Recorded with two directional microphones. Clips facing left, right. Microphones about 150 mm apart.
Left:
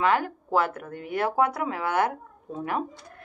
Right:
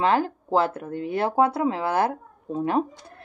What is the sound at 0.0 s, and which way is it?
Speech, 30° right (ahead or behind).